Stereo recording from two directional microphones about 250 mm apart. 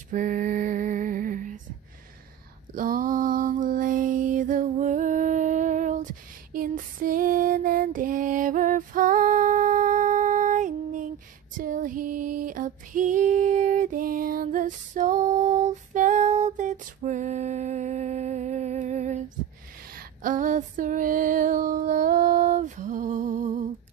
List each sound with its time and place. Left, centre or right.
0.1 s mantra: right
2.7 s mantra: right
6.5 s female singing: right